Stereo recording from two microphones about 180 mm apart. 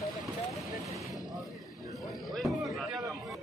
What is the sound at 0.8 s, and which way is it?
Vehicle, 15° right (ahead or behind).